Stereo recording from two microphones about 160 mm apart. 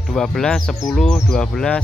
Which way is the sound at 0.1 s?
5° left (ahead or behind).